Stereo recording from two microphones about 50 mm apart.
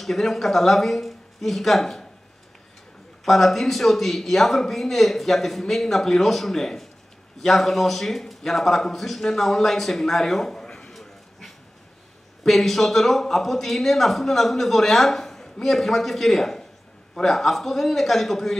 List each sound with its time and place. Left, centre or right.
0.0 s speech: centre
3.3 s speech: centre
10.9 s a sound: centre
12.4 s speech: centre